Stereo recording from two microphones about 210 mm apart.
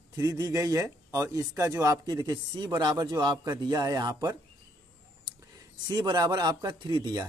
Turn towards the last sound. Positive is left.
turn(degrees=-20)  # may be behind; listen again after turning